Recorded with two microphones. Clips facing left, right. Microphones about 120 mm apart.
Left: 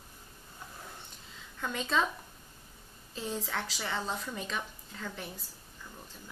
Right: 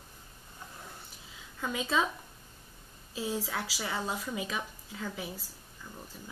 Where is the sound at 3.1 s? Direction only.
5° right (ahead or behind).